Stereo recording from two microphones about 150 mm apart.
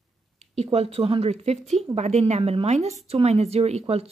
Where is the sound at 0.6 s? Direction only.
40° right (ahead or behind).